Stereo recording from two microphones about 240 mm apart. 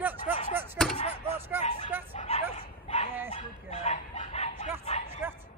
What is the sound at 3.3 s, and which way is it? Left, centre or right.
Chicken, left.